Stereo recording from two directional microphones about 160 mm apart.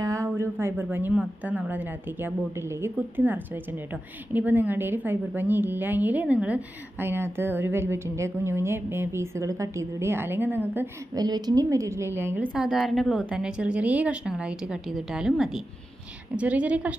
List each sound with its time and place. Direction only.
0.0 s a woman's voice: 20° right (ahead or behind)
11.1 s a woman's voice: 25° right (ahead or behind)
12.5 s a woman's voice: centre (ahead or behind)